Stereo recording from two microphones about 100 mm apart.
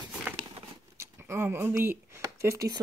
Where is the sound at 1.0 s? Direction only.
25° right (ahead or behind).